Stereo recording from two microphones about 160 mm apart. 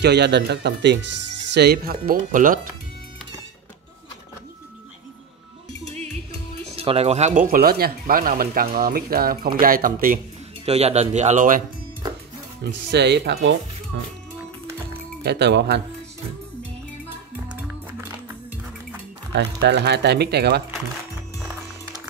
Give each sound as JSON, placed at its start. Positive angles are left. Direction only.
{"t": 0.0, "sound": "speech", "side_deg": -90}
{"t": 6.6, "sound": "speech", "side_deg": -35}
{"t": 10.6, "sound": "speech", "side_deg": -40}
{"t": 12.9, "sound": "speech", "side_deg": -90}
{"t": 15.2, "sound": "speech", "side_deg": -90}
{"t": 19.3, "sound": "speech", "side_deg": -90}